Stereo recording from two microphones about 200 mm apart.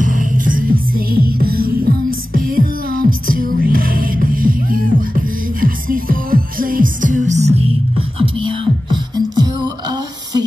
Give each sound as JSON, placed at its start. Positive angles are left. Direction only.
{"t": 0.0, "sound": "music", "side_deg": -40}
{"t": 8.2, "sound": "beatboxing", "side_deg": -25}